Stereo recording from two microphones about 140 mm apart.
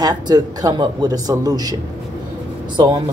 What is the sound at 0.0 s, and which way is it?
A man's voice, 30° right (ahead or behind).